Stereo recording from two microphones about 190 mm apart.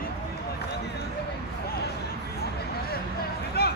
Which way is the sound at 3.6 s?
55° left (ahead or behind).